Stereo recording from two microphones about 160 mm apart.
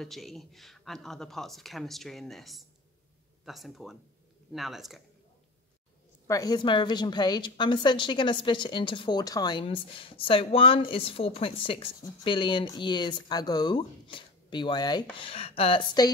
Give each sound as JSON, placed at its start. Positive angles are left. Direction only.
{"t": 0.0, "sound": "speech", "side_deg": 0}
{"t": 6.2, "sound": "a woman's voice", "side_deg": 20}